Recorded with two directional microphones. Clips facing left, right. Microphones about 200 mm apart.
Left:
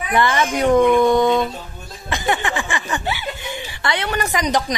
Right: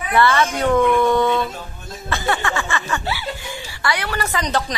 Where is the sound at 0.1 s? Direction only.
15° left (ahead or behind).